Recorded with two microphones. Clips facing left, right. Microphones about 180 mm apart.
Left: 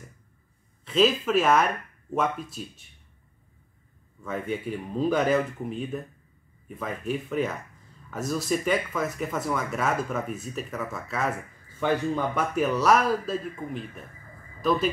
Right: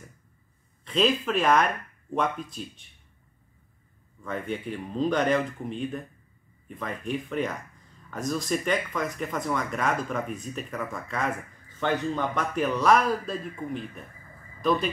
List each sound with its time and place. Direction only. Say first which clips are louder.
0.8 s speech: left 2 dB; 5° left (ahead or behind)
4.2 s speech: left 1 dB; 5° left (ahead or behind)